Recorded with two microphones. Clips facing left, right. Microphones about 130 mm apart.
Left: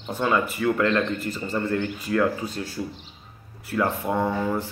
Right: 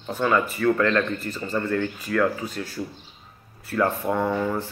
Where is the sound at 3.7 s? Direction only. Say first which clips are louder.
Right 1 dB; 20° left (ahead or behind).